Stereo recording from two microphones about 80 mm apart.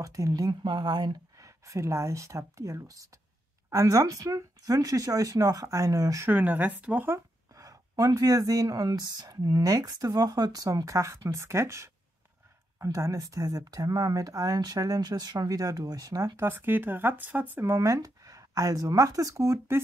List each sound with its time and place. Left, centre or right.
0.0 s speech: right
0.5 s speech: right
1.4 s speech: right
6.2 s speech: right
7.1 s speech: right
16.3 s speech: right
17.6 s speech: right